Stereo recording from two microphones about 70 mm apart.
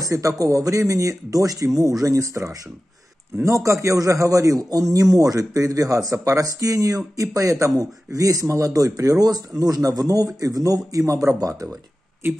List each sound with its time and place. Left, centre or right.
0.0 s speech: right